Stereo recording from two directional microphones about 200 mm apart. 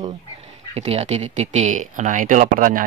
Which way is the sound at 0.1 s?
35° right (ahead or behind).